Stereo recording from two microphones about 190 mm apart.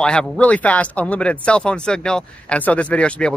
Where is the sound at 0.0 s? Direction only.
5° left (ahead or behind).